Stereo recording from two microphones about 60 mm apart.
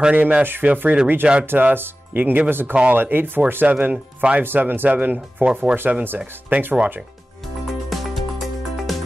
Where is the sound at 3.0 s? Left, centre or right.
Right.